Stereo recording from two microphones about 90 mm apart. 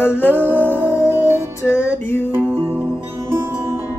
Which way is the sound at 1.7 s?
20° left (ahead or behind).